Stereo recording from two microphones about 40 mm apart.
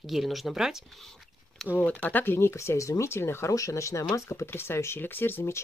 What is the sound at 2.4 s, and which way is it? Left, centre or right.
Speech, left.